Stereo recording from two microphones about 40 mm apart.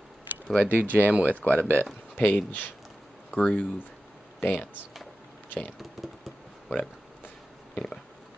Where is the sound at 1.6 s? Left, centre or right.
Right.